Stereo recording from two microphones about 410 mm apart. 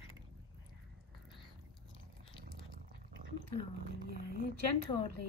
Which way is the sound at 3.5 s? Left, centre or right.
Right.